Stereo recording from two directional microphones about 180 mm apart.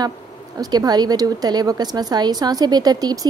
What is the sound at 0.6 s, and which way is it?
A woman's voice, 20° right (ahead or behind).